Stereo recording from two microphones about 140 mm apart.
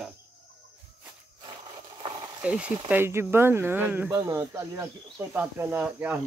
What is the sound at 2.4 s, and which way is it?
Speech, 10° right (ahead or behind).